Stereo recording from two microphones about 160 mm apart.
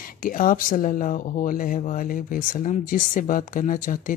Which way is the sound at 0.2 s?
60° left (ahead or behind).